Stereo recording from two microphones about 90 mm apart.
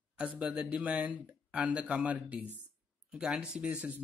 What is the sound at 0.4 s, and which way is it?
Speech, 10° right (ahead or behind).